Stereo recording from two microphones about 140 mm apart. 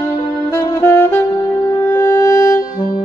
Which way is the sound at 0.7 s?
15° left (ahead or behind).